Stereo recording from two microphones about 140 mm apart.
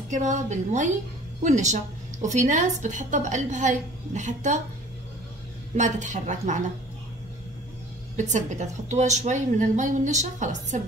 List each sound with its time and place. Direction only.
0.1 s a woman's voice: 60° right (ahead or behind)
5.8 s a woman's voice: 60° right (ahead or behind)
8.2 s a woman's voice: 60° right (ahead or behind)